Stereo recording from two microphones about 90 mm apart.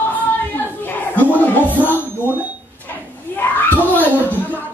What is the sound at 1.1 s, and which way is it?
Music, 20° left (ahead or behind).